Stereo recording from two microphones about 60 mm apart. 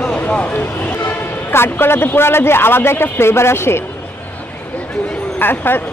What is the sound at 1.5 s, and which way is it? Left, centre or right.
Speech, left.